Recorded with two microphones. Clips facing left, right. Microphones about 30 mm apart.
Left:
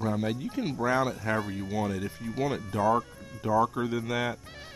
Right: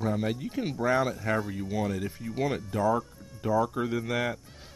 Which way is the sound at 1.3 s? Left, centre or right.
Centre.